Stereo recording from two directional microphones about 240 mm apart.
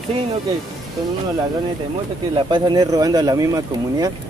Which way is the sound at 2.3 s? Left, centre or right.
Centre.